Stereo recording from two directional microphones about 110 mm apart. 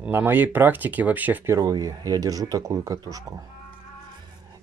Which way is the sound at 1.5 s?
35° right (ahead or behind).